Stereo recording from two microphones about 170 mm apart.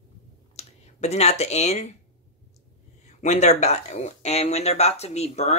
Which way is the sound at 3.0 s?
45° left (ahead or behind).